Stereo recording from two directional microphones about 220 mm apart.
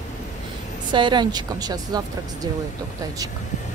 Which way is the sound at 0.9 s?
20° right (ahead or behind).